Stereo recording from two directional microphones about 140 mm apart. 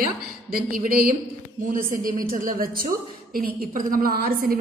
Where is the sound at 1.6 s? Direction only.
80° right.